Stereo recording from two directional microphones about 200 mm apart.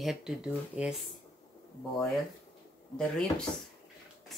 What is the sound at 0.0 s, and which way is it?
Speech, centre (ahead or behind).